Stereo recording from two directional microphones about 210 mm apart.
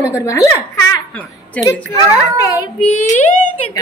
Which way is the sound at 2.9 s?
35° left (ahead or behind).